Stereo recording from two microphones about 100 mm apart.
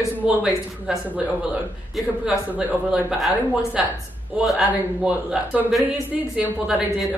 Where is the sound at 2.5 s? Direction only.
15° right (ahead or behind).